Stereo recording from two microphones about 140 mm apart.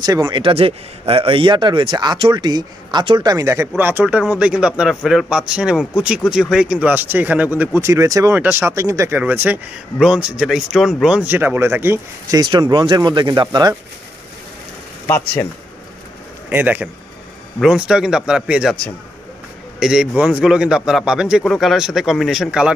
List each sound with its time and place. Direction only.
0.0 s speech: 30° right (ahead or behind)
0.4 s speech: 40° right (ahead or behind); by 12.4 s 15° right (ahead or behind)
12.4 s speech: 30° right (ahead or behind)
15.0 s speech: 15° left (ahead or behind)
16.4 s a man's voice: 10° right (ahead or behind)
19.8 s a man's voice: 5° right (ahead or behind)